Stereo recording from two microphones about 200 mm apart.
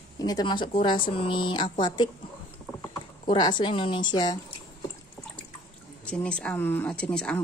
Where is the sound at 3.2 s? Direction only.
20° left (ahead or behind).